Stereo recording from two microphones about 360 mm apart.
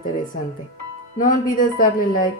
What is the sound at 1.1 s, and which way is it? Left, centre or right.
Speech, left.